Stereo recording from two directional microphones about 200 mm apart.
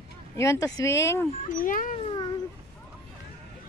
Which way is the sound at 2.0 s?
25° left (ahead or behind).